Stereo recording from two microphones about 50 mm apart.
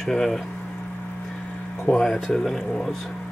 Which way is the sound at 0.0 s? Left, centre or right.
Centre.